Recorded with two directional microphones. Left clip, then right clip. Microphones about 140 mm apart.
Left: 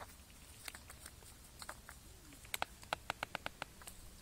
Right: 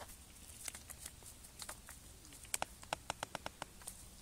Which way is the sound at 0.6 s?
15° right (ahead or behind).